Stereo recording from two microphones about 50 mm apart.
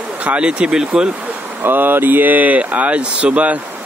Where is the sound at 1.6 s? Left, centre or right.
Right.